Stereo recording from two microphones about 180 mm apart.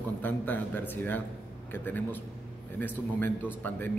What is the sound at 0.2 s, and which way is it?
A man's voice, 10° left (ahead or behind).